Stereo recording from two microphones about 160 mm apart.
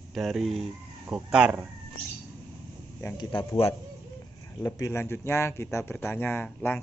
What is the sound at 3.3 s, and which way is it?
Speech, 35° left (ahead or behind).